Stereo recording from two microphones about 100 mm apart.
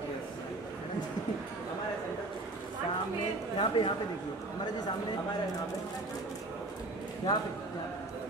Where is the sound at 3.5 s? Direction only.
55° left (ahead or behind).